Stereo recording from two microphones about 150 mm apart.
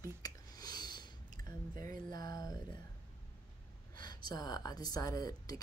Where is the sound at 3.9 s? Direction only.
30° left (ahead or behind).